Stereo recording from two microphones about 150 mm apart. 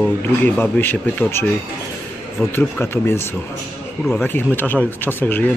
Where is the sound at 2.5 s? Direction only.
15° left (ahead or behind).